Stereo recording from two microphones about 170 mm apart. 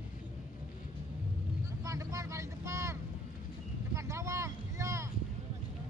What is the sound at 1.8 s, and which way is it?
Vehicle, 20° right (ahead or behind).